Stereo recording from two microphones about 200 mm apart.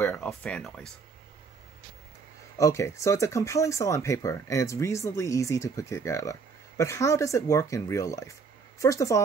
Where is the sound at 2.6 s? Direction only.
15° left (ahead or behind).